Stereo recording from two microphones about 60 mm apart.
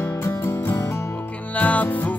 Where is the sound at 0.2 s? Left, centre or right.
Left.